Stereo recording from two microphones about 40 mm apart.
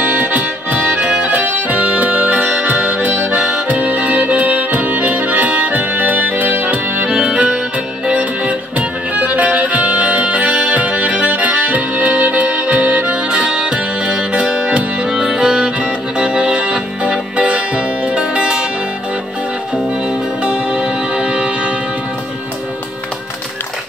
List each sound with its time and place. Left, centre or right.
0.0 s music: right
3.2 s accordion: right
7.1 s accordion: right
8.1 s music: right
20.1 s music: right